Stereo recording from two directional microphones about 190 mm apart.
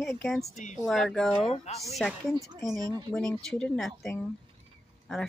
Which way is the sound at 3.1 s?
5° left (ahead or behind).